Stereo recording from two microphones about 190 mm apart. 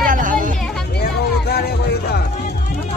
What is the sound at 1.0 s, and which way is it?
Music, 55° left (ahead or behind).